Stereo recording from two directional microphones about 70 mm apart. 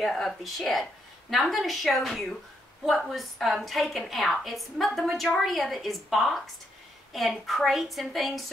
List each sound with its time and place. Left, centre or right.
0.0 s a woman's voice: centre